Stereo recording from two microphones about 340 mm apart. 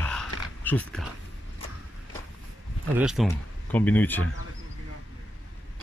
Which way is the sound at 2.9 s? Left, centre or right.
Centre.